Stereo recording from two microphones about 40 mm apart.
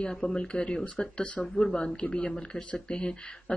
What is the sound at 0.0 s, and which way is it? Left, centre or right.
Speech, centre.